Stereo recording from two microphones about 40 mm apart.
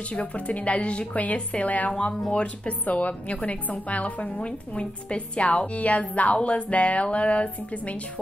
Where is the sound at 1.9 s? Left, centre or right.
Left.